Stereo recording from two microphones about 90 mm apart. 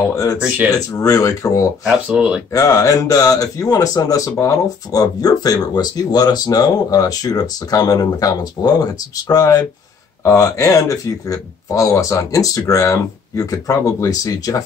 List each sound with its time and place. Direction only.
0.1 s speech: 35° left (ahead or behind)
1.9 s speech: 10° right (ahead or behind)
2.5 s speech: 40° left (ahead or behind)